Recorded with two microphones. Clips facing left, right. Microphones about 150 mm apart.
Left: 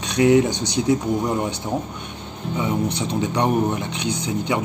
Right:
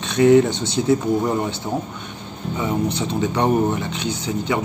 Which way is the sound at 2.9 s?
15° left (ahead or behind).